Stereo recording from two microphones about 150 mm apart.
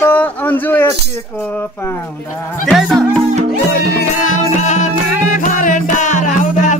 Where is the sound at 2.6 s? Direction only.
Centre (ahead or behind).